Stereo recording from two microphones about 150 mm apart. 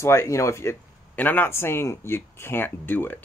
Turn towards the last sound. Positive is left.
turn(degrees=15)  # may be behind; listen again after turning